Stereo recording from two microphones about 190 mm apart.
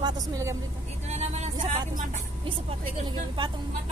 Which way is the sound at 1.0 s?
35° right (ahead or behind).